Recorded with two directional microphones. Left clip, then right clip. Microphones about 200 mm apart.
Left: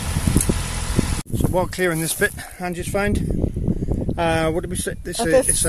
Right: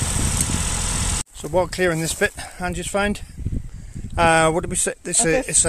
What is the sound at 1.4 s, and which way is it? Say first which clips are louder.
Speech: right 1 dB; centre (ahead or behind).